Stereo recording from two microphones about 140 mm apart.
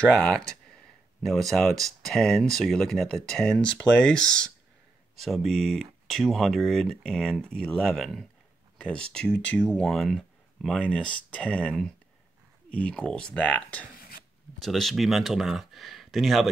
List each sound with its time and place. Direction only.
0.0 s speech: 5° left (ahead or behind)
13.9 s a sound: 90° left
14.6 s speech: centre (ahead or behind)